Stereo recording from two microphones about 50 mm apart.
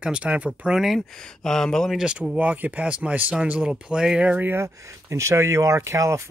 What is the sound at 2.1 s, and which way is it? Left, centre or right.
Speech, right.